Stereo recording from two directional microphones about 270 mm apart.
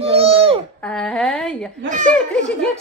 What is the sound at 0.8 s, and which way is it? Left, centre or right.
Speech, centre.